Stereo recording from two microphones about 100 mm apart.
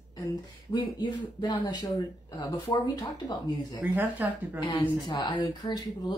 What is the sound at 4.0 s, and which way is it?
Speech, 15° right (ahead or behind).